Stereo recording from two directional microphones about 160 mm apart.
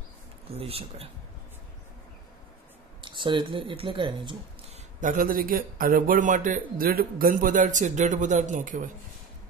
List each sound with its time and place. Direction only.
0.5 s speech: 35° right (ahead or behind)
3.0 s speech: 30° right (ahead or behind)
5.0 s a man's voice: 60° right (ahead or behind)